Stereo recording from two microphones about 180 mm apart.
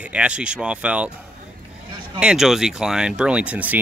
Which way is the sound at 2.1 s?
5° right (ahead or behind).